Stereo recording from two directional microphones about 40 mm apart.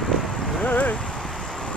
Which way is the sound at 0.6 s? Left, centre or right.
Left.